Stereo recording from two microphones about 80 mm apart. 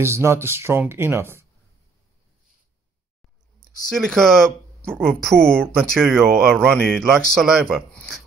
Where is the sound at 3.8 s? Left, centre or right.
Centre.